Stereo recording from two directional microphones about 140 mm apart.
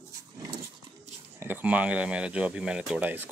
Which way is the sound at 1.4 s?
10° right (ahead or behind).